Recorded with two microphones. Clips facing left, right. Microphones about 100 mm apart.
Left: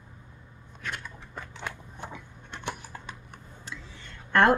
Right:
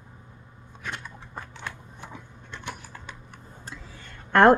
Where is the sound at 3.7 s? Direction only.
40° right (ahead or behind).